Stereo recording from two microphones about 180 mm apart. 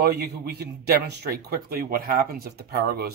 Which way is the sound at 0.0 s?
65° right (ahead or behind).